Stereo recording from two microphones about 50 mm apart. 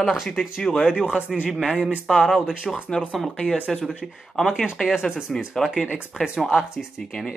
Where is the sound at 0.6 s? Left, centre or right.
Centre.